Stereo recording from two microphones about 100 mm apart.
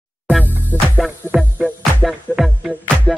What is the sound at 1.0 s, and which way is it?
Music, 5° right (ahead or behind).